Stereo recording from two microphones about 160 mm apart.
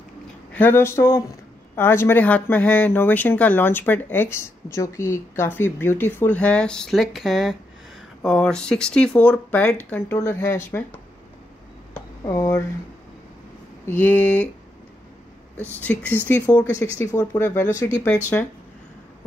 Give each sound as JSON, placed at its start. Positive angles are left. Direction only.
{"t": 0.5, "sound": "speech", "side_deg": 10}
{"t": 12.3, "sound": "speech", "side_deg": 15}
{"t": 13.8, "sound": "speech", "side_deg": 10}
{"t": 15.6, "sound": "speech", "side_deg": 10}